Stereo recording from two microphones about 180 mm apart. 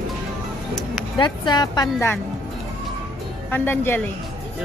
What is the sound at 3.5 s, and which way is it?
Speech, 10° left (ahead or behind).